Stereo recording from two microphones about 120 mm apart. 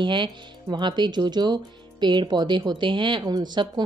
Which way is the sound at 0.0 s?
40° right (ahead or behind).